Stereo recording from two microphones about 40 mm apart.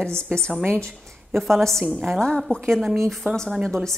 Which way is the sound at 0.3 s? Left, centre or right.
Centre.